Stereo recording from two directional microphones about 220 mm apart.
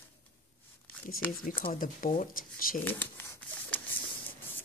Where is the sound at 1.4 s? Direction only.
40° left (ahead or behind).